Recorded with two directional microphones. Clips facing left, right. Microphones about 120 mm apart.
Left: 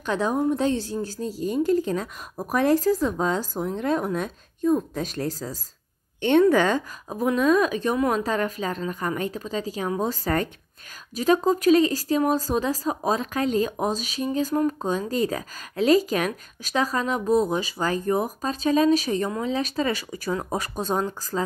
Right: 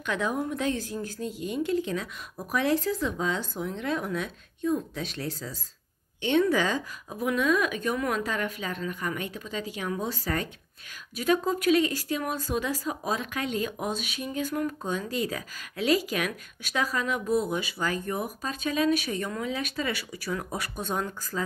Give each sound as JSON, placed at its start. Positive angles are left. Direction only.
{"t": 0.0, "sound": "speech", "side_deg": 35}
{"t": 11.1, "sound": "speech", "side_deg": 40}